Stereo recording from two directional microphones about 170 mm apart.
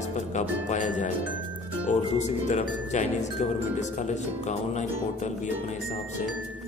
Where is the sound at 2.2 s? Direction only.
45° left (ahead or behind).